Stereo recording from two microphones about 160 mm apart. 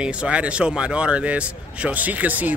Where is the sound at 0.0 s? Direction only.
5° right (ahead or behind).